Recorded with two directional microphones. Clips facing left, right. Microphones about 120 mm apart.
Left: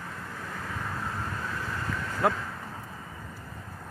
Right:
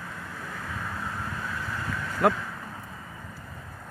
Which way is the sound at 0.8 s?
Centre (ahead or behind).